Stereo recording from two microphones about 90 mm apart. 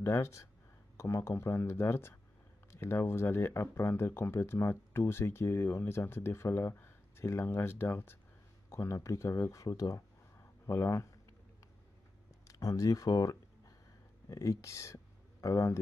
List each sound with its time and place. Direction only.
0.0 s speech: 30° left (ahead or behind)
12.4 s a sound: 40° left (ahead or behind)
14.3 s speech: 35° left (ahead or behind)